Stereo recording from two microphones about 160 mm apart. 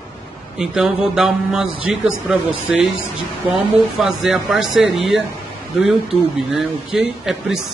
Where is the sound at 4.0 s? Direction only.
5° right (ahead or behind).